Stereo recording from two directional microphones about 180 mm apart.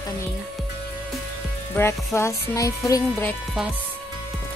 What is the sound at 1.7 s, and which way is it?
Speech, 15° left (ahead or behind).